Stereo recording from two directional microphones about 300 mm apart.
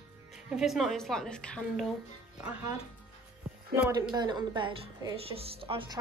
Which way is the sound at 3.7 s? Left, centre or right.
Centre.